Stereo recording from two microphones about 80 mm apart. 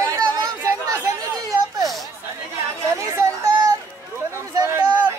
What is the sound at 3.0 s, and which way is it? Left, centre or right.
Chatter, right.